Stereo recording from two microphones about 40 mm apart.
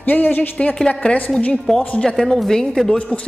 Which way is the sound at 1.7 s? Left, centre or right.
Centre.